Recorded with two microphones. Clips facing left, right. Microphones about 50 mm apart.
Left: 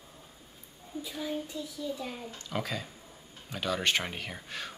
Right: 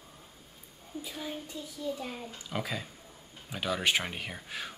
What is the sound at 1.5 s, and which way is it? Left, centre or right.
Speech, right.